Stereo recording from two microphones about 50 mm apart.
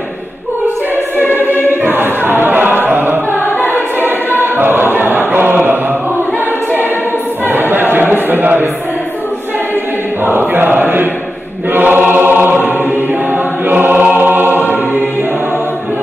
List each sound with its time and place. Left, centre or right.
1.3 s choir: right
3.4 s choir: left
4.0 s choir: right
7.4 s choir: right
10.2 s choir: right
14.0 s music: right